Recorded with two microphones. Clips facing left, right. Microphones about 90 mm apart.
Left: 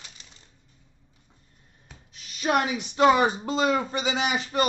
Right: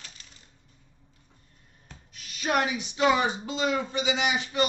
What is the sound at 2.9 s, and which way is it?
Speech, 50° left (ahead or behind).